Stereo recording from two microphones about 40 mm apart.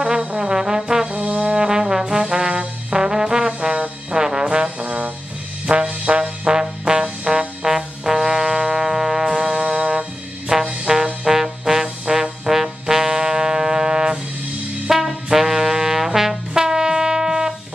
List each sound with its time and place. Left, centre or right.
0.4 s trombone: centre
1.0 s trombone: right
1.5 s trombone: centre
4.7 s trombone: right
11.2 s trombone: centre
14.9 s brass instrument: centre